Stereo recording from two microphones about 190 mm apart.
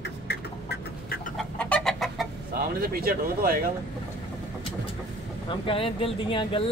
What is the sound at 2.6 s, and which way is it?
Speech, 50° right (ahead or behind).